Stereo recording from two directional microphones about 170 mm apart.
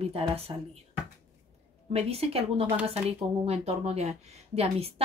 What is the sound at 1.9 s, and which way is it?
Speech, 35° right (ahead or behind).